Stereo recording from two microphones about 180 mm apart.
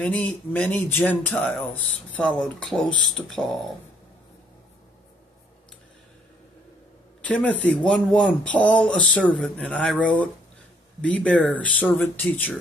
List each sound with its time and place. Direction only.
0.0 s speech: 10° left (ahead or behind)
7.2 s speech: 10° left (ahead or behind)